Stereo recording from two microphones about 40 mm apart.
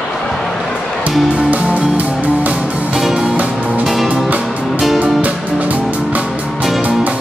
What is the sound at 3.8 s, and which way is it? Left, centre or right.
Music, centre.